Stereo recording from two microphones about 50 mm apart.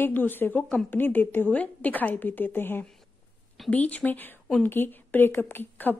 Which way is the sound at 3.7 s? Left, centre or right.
Left.